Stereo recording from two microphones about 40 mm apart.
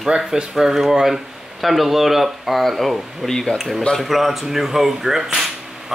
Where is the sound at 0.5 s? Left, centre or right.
Centre.